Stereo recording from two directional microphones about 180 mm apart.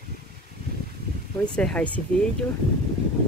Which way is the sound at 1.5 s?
5° left (ahead or behind).